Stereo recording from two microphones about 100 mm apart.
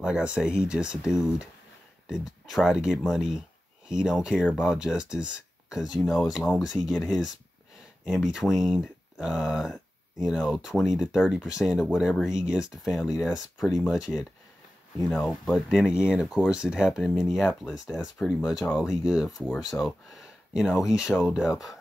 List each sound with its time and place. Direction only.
0.0 s speech: 10° right (ahead or behind)
15.2 s speech: centre (ahead or behind)